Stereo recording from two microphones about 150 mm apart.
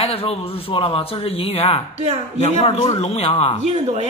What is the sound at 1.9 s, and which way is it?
Speech, 45° right (ahead or behind).